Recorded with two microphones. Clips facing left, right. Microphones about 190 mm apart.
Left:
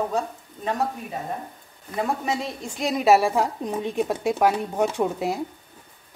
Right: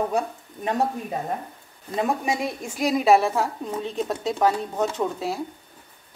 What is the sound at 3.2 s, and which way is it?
A woman's voice, 15° left (ahead or behind).